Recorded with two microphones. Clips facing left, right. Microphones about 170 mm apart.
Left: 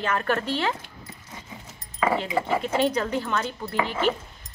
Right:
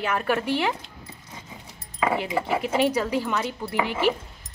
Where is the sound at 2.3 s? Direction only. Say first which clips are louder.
Right 2 dB; 10° right (ahead or behind).